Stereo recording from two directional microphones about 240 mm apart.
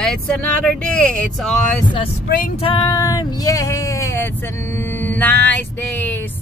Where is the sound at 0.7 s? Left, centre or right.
Centre.